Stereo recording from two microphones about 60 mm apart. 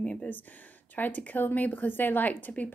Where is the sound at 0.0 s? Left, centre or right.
Centre.